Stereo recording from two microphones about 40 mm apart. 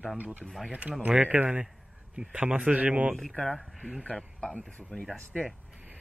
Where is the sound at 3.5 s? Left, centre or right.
Centre.